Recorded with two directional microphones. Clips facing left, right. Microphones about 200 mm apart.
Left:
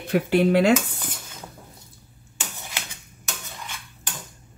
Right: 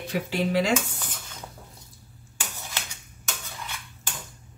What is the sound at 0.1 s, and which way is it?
Speech, 60° left (ahead or behind).